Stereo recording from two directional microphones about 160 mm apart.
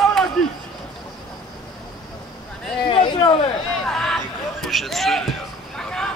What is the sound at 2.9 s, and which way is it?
Speech, 30° left (ahead or behind).